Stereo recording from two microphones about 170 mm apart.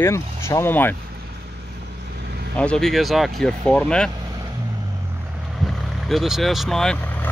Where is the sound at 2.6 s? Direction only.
5° left (ahead or behind).